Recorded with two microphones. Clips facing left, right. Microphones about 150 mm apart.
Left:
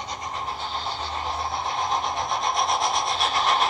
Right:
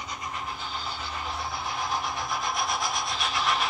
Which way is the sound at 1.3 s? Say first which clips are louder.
Left 5 dB; 30° left (ahead or behind).